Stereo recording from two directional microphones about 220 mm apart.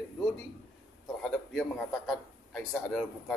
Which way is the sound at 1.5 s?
Centre (ahead or behind).